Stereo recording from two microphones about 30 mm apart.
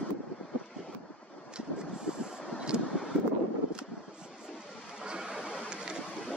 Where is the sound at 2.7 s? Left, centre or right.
Right.